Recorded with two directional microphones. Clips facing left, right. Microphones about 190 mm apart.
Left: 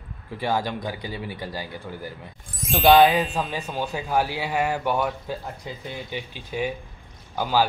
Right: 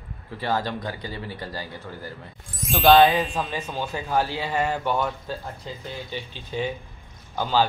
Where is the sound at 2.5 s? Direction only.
Centre (ahead or behind).